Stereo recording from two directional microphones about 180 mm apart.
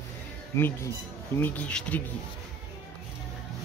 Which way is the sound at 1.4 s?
10° left (ahead or behind).